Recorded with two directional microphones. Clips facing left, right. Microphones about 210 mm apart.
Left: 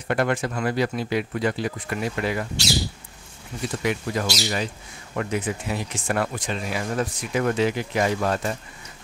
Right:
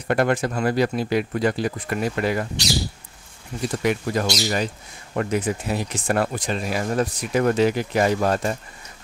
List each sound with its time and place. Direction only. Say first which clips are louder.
0.1 s speech: right 3 dB; 40° right (ahead or behind)
3.8 s speech: right 3 dB; 40° right (ahead or behind)